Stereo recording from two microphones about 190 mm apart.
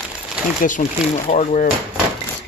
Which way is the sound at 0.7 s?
40° left (ahead or behind).